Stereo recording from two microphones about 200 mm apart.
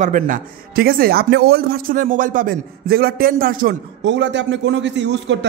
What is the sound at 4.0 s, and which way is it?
A man's voice, 60° right (ahead or behind).